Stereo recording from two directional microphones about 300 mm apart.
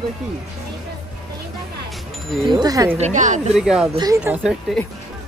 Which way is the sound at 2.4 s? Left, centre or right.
Centre.